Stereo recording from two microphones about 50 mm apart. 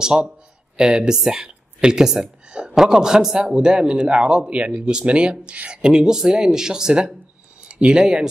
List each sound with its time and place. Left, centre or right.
0.0 s a man's voice: centre